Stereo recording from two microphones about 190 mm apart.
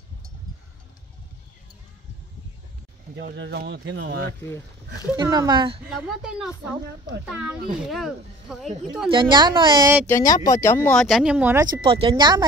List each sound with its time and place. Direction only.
3.2 s speech: 65° right (ahead or behind)
4.0 s speech: 55° right (ahead or behind)
5.1 s speech: 20° right (ahead or behind)
6.2 s speech: 5° right (ahead or behind)
9.1 s speech: 25° right (ahead or behind)
10.0 s speech: 15° left (ahead or behind); by 11.6 s 5° right (ahead or behind)
11.6 s speech: 20° right (ahead or behind)